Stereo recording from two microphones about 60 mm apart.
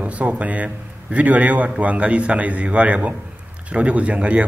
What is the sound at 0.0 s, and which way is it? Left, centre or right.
A man's voice, right.